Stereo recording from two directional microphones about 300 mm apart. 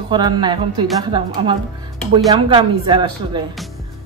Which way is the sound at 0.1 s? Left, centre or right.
Centre.